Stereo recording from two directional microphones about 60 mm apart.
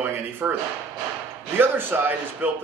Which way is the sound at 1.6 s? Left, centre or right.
Right.